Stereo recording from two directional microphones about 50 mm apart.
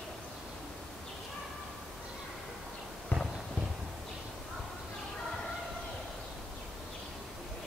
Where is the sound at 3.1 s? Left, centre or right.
Left.